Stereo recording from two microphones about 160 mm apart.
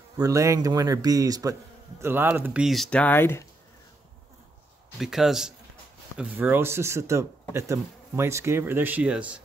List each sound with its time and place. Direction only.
0.2 s speech: 20° right (ahead or behind); by 3.4 s 15° left (ahead or behind)
4.9 s speech: centre (ahead or behind)